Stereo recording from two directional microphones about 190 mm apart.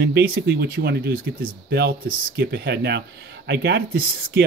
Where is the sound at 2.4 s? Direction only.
60° right (ahead or behind).